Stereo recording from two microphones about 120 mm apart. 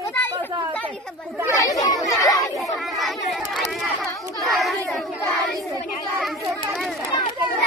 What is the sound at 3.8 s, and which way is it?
Speech, 30° left (ahead or behind).